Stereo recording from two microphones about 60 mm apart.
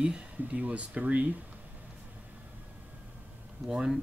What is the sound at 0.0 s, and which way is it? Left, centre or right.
Speech, centre.